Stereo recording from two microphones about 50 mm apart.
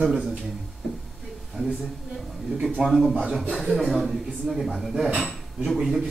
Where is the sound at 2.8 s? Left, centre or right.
Centre.